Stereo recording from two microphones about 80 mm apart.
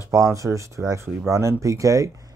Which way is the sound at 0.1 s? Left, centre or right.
Right.